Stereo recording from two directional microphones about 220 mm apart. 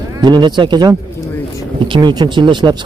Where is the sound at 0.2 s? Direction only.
20° right (ahead or behind).